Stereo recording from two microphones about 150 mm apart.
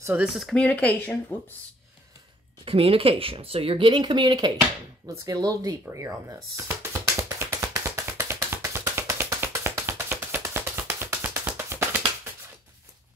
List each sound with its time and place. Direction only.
0.0 s speech: 10° right (ahead or behind)
0.3 s speech: centre (ahead or behind)
2.6 s speech: 40° right (ahead or behind)
5.0 s music: 25° right (ahead or behind)